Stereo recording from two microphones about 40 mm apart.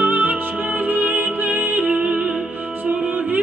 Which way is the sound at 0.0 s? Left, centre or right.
Right.